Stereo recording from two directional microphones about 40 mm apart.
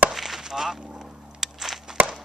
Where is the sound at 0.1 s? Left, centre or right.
Centre.